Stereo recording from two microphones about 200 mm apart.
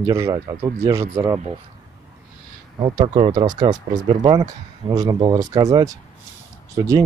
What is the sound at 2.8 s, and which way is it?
Speech, 25° right (ahead or behind).